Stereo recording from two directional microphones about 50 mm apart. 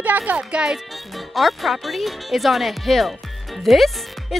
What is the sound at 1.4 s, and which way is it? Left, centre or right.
Speech, centre.